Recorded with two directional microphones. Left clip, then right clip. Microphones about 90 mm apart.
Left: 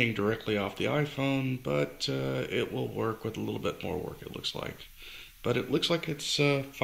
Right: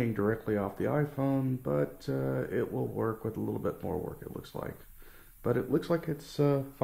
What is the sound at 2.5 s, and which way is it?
Speech, 10° left (ahead or behind).